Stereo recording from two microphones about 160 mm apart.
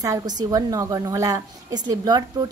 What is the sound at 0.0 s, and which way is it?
A woman's voice, 25° right (ahead or behind).